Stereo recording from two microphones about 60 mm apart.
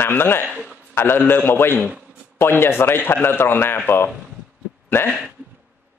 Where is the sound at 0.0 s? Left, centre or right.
Left.